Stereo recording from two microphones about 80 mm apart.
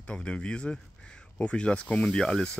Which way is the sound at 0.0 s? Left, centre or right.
Centre.